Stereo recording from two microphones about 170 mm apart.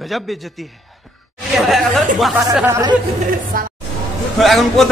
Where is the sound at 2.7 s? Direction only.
20° right (ahead or behind).